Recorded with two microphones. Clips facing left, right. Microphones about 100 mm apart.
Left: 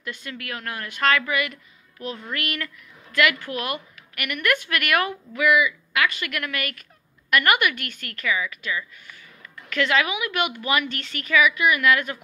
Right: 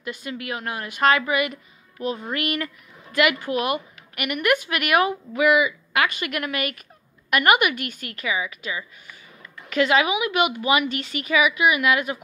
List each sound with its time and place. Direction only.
0.0 s a woman's voice: 20° right (ahead or behind)